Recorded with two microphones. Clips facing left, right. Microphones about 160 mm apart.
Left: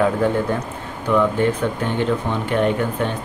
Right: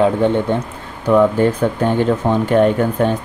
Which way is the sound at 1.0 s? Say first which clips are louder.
Right 5 dB; 35° right (ahead or behind).